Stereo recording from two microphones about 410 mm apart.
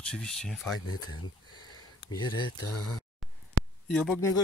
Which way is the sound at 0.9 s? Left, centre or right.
Left.